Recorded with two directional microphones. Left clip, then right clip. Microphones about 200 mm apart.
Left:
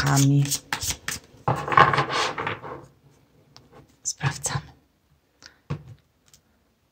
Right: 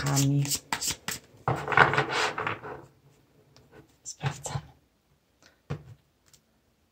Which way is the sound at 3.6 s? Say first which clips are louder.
Left 8 dB; 20° left (ahead or behind).